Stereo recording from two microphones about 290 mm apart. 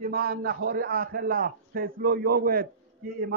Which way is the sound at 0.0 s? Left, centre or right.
Right.